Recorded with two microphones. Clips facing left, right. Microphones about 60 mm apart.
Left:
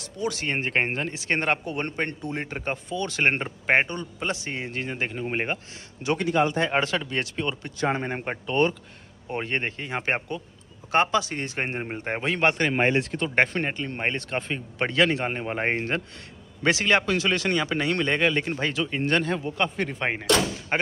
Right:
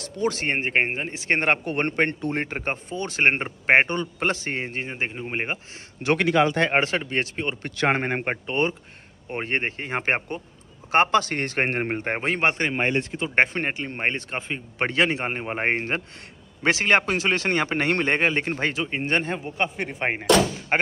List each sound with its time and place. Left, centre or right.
0.0 s speech: right
3.9 s a man's voice: right
4.3 s speech: right
5.2 s speech: centre
6.1 s speech: right
6.7 s speech: right
7.7 s speech: right
8.5 s speech: centre
9.3 s speech: right
12.7 s speech: centre
13.3 s speech: right
20.7 s speech: right